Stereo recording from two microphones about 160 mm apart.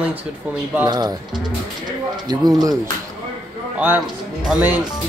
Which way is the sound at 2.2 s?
25° right (ahead or behind).